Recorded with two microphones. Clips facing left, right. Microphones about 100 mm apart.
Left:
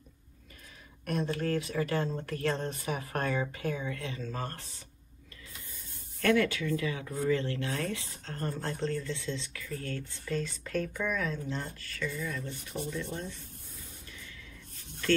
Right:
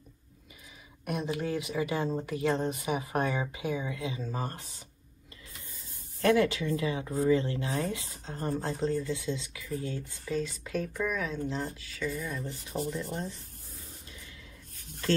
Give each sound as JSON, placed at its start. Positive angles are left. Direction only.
{"t": 1.0, "sound": "speech", "side_deg": -10}
{"t": 6.2, "sound": "speech", "side_deg": -25}
{"t": 12.7, "sound": "speech", "side_deg": -35}